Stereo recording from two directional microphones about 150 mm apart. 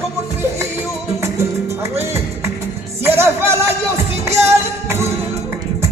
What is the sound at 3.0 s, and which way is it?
Music, 15° right (ahead or behind).